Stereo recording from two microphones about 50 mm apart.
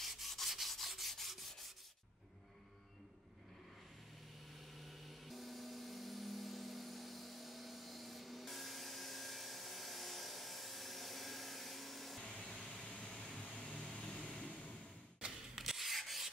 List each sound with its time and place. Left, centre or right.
0.0 s rub: centre
4.7 s a sound: centre
12.5 s vehicle: centre
15.1 s rub: centre